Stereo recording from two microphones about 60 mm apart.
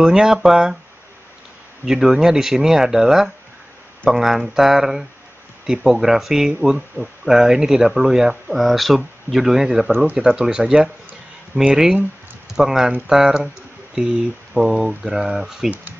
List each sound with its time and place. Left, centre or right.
0.0 s speech: centre
1.9 s speech: centre
4.2 s mantra: centre
5.7 s speech: centre